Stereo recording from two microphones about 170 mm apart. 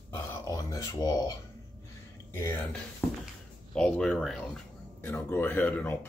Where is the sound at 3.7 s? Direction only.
5° left (ahead or behind).